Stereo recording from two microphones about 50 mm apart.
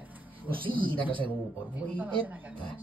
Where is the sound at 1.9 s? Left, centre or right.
Right.